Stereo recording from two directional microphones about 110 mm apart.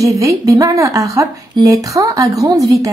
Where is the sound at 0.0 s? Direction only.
30° right (ahead or behind).